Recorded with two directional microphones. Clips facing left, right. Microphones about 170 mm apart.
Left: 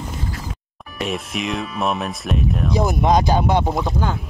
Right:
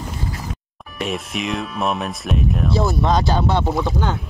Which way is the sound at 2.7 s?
15° left (ahead or behind).